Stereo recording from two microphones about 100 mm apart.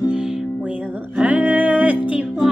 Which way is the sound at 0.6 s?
15° right (ahead or behind).